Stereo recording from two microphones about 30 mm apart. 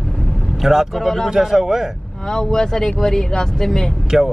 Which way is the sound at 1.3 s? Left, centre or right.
Centre.